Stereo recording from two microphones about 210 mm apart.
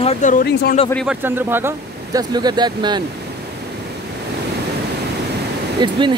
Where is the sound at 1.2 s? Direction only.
10° right (ahead or behind).